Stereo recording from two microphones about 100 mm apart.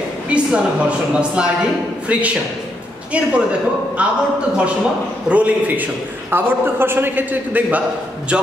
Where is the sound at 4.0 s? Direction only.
10° right (ahead or behind).